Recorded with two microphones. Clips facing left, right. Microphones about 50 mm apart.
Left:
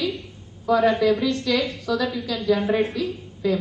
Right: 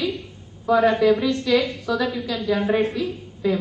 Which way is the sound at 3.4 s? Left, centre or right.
Right.